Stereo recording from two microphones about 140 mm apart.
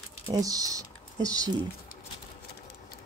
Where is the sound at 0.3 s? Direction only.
25° right (ahead or behind).